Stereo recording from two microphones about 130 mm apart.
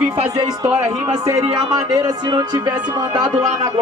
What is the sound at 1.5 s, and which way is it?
Speech, 30° right (ahead or behind).